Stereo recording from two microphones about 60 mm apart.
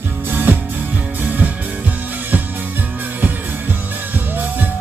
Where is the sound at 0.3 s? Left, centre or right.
Right.